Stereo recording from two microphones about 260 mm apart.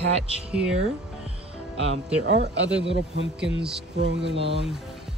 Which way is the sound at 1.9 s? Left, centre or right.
Right.